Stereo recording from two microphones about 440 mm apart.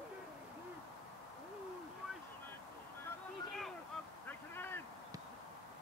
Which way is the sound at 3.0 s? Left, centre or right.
Centre.